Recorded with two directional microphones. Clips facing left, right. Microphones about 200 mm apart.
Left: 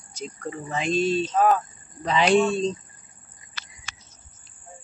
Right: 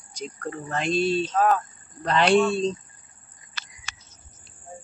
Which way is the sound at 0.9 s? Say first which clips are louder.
Even; 40° left (ahead or behind).